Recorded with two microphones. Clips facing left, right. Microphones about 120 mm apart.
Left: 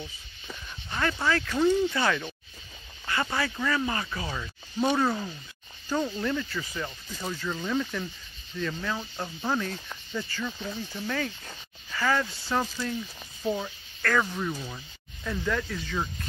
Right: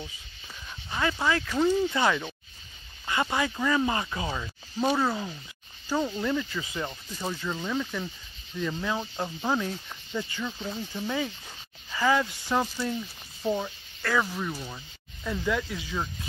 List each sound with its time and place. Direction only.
0.8 s speech: 10° right (ahead or behind)
4.7 s speech: centre (ahead or behind)